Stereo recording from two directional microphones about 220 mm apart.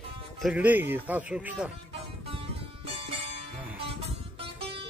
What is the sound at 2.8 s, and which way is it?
Music, 30° right (ahead or behind).